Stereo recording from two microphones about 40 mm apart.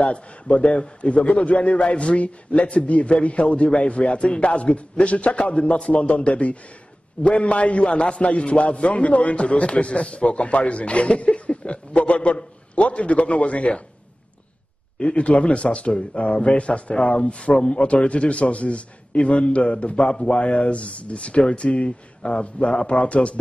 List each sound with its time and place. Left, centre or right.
0.0 s a man's voice: left
15.0 s speech: left